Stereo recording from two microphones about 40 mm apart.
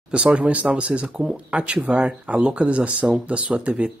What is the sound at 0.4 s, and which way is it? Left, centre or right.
Speech, right.